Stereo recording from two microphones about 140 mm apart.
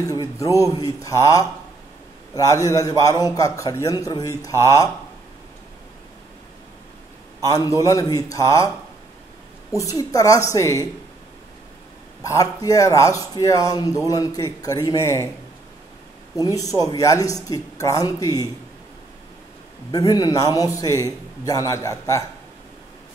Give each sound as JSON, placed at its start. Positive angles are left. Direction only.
{"t": 0.0, "sound": "a man's voice", "side_deg": 25}
{"t": 7.4, "sound": "speech", "side_deg": 25}
{"t": 9.8, "sound": "speech", "side_deg": 25}
{"t": 12.2, "sound": "speech", "side_deg": 25}
{"t": 16.3, "sound": "speech", "side_deg": 25}
{"t": 19.9, "sound": "speech", "side_deg": 25}